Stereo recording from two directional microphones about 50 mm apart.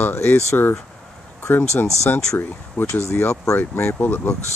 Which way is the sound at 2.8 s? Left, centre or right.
Left.